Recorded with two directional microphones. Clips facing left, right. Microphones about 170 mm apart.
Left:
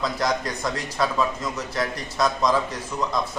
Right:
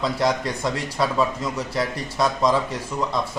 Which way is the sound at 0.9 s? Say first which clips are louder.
Right 1 dB; 10° right (ahead or behind).